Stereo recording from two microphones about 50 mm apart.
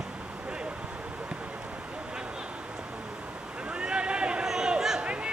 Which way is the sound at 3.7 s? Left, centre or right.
Centre.